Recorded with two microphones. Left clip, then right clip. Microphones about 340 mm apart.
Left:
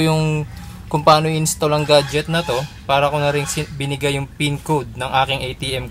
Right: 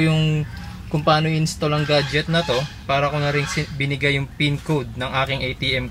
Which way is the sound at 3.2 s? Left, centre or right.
Left.